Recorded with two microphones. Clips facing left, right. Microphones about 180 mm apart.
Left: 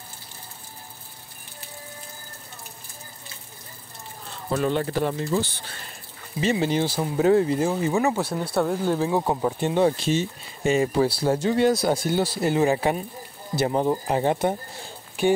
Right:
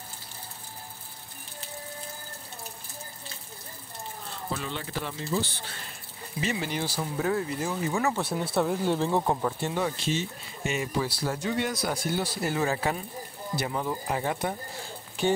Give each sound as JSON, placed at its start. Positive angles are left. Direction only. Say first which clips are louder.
{"t": 4.5, "sound": "speech", "louder": "left 11 dB", "side_deg": 50}
{"t": 6.4, "sound": "speech", "louder": "left 8 dB", "side_deg": 25}
{"t": 8.4, "sound": "speech", "louder": "left 3 dB", "side_deg": 0}
{"t": 9.4, "sound": "speech", "louder": "left 7 dB", "side_deg": 20}
{"t": 9.8, "sound": "speech", "louder": "left 7 dB", "side_deg": 40}
{"t": 13.6, "sound": "speech", "louder": "left 9 dB", "side_deg": 30}